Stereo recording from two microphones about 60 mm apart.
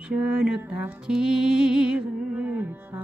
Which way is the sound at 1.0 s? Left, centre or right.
Centre.